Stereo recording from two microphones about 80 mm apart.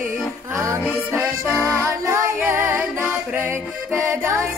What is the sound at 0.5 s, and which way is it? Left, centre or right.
Music, right.